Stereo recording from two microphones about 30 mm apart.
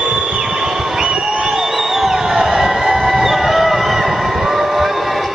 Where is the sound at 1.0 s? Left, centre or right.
Right.